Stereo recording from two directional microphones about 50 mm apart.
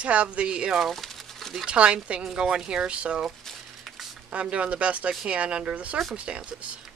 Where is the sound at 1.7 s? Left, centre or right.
Right.